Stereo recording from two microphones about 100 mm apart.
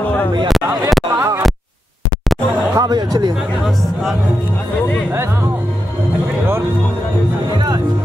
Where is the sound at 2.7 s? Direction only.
40° right (ahead or behind).